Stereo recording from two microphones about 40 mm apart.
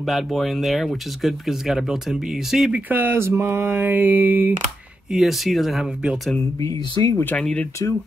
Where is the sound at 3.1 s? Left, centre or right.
Right.